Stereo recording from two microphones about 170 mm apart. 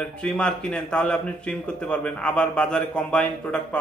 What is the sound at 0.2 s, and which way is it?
A man's voice, 5° left (ahead or behind).